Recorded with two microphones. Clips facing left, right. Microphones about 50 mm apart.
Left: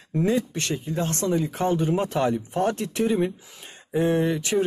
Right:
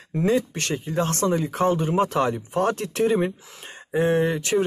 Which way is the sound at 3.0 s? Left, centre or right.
Centre.